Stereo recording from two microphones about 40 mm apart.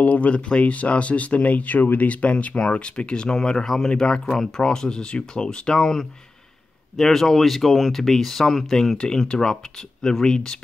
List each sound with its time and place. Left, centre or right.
0.0 s speech: left; by 8.9 s centre
8.9 s speech: centre